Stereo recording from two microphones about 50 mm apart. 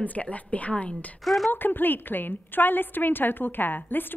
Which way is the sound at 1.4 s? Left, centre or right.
Left.